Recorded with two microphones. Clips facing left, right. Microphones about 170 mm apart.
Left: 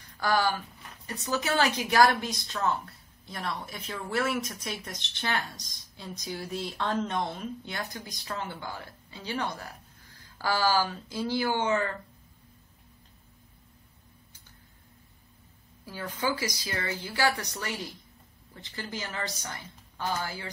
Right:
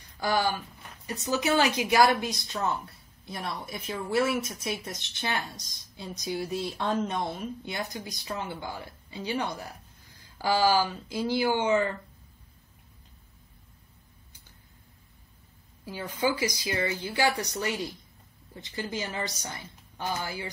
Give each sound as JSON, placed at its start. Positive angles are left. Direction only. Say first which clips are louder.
{"t": 0.2, "sound": "a woman's voice", "louder": "even", "side_deg": -15}
{"t": 5.9, "sound": "a woman's voice", "louder": "right 5 dB", "side_deg": -15}
{"t": 15.8, "sound": "a woman's voice", "louder": "right 3 dB", "side_deg": -20}